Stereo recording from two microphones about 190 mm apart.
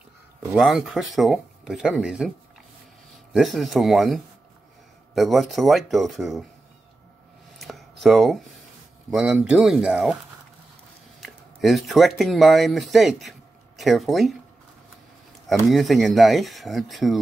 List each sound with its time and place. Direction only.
0.6 s speech: centre (ahead or behind)
3.3 s speech: centre (ahead or behind)
7.5 s a sound: centre (ahead or behind)
9.1 s speech: 5° right (ahead or behind)
11.1 s speech: centre (ahead or behind)
15.6 s speech: centre (ahead or behind)